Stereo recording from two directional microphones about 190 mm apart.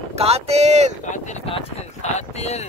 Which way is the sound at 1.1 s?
35° left (ahead or behind).